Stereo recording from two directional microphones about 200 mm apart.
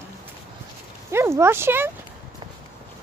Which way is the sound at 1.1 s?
15° right (ahead or behind).